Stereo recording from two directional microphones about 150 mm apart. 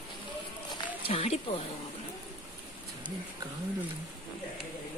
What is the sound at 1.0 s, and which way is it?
Speech, 40° left (ahead or behind).